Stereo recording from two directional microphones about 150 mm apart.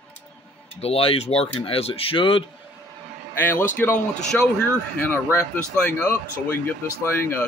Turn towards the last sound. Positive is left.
turn(degrees=15)  # may be behind; listen again after turning